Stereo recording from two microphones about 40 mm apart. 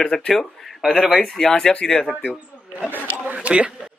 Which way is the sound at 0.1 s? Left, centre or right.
Centre.